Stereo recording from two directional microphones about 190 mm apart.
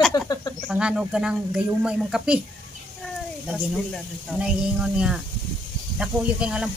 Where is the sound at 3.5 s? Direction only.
Centre (ahead or behind).